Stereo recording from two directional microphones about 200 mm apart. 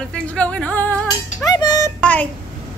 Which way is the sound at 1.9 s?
5° left (ahead or behind).